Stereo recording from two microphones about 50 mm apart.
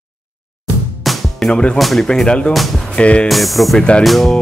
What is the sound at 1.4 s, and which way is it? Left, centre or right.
Speech, left.